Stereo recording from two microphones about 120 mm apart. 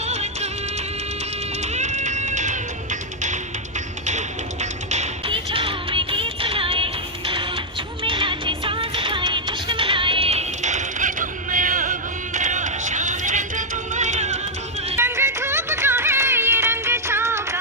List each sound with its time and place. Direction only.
0.0 s music: 65° right (ahead or behind)
1.7 s music: 85° right
4.0 s music: 75° right (ahead or behind)
5.3 s music: 50° right (ahead or behind); by 14.4 s 75° right (ahead or behind)
15.0 s music: 20° right (ahead or behind)